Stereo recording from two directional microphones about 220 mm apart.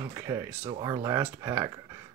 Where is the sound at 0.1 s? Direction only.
15° right (ahead or behind).